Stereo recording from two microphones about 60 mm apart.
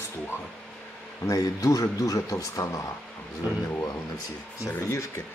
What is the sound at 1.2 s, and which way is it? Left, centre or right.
Speech, left.